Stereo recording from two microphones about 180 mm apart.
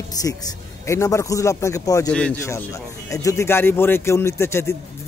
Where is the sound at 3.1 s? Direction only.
15° left (ahead or behind).